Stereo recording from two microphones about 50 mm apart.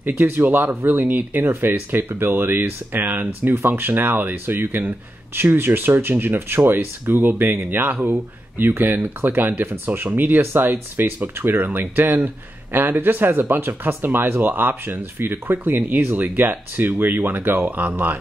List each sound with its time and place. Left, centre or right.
0.2 s speech: right